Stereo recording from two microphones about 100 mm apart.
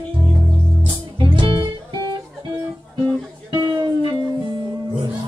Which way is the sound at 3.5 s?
50° right (ahead or behind).